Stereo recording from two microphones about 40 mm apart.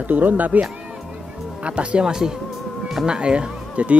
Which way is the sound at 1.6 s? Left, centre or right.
Right.